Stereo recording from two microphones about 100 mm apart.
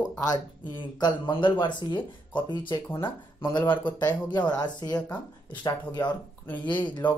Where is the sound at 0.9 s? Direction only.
50° left (ahead or behind).